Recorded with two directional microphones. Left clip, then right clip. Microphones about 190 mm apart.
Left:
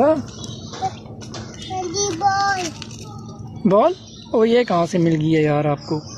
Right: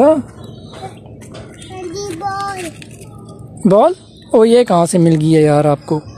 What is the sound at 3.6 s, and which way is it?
Speech, 30° right (ahead or behind).